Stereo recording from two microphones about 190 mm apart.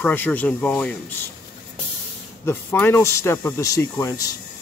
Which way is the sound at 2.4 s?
10° left (ahead or behind).